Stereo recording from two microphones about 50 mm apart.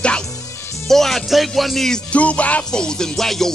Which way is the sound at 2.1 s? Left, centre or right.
Left.